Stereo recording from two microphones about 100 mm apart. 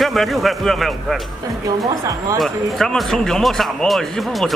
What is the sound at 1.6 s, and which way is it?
Speech, 35° right (ahead or behind).